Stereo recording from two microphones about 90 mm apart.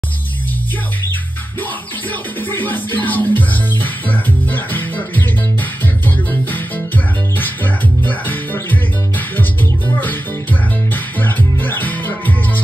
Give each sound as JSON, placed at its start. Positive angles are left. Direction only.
{"t": 2.5, "sound": "music", "side_deg": 20}